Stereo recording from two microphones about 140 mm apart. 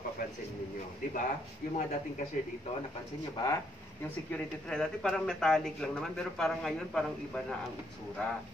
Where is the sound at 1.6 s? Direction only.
75° left (ahead or behind).